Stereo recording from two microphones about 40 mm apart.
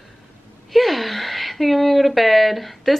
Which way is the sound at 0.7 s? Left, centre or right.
Centre.